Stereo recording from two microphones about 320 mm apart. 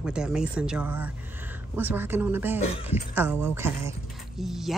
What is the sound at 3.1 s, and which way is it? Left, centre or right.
Speech, centre.